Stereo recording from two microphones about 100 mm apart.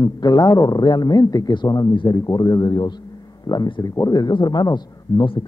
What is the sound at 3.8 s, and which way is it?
Speech, 35° left (ahead or behind).